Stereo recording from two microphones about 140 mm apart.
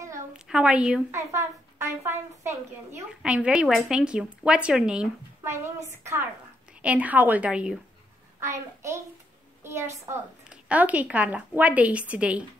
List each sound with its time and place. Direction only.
0.3 s a woman's voice: 5° right (ahead or behind)
1.1 s a woman's voice: 20° right (ahead or behind)
3.2 s speech: 10° right (ahead or behind)
5.4 s a woman's voice: 20° right (ahead or behind)
6.8 s a woman's voice: 10° right (ahead or behind)
8.4 s a child's voice: 20° right (ahead or behind)
9.6 s a sound: 20° right (ahead or behind)
10.5 s a woman's voice: 10° right (ahead or behind)